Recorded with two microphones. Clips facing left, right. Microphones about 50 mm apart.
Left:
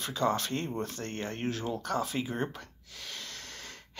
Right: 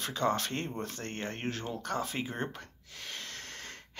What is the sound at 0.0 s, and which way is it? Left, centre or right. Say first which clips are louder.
Speech: left 1 dB; right.